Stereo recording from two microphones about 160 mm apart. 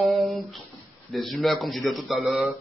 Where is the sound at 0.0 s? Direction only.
Centre (ahead or behind).